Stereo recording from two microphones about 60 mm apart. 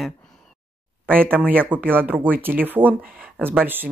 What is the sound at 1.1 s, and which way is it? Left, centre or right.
Speech, right.